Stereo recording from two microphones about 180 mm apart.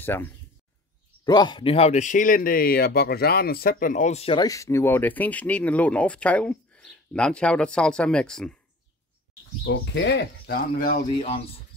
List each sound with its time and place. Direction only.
0.0 s speech: 10° left (ahead or behind)
1.2 s speech: 20° left (ahead or behind); by 8.5 s 5° left (ahead or behind)
9.7 s speech: 75° left (ahead or behind); by 11.1 s 55° left (ahead or behind)
11.1 s speech: 35° left (ahead or behind)